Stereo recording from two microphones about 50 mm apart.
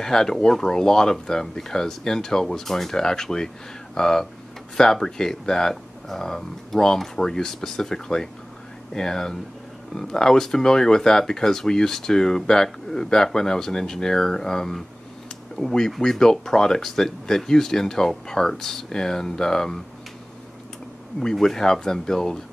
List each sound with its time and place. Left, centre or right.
0.0 s speech: centre
21.2 s speech: centre